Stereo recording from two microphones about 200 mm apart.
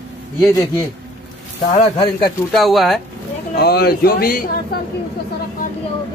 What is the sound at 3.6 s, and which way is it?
Speech, 50° left (ahead or behind).